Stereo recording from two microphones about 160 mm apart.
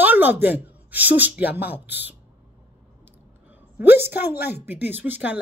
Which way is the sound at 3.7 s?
15° right (ahead or behind).